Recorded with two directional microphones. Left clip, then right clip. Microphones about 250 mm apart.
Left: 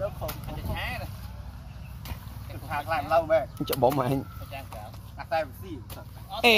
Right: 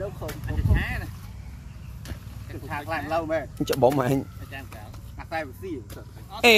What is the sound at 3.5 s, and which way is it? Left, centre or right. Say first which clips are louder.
Speech: right 3 dB; centre.